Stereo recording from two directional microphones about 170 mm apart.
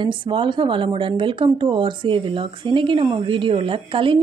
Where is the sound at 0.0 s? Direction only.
30° right (ahead or behind).